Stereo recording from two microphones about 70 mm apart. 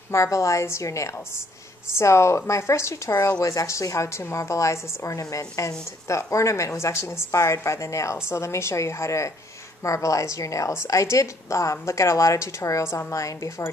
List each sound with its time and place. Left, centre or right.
0.1 s a woman's voice: left
3.1 s a woman's voice: left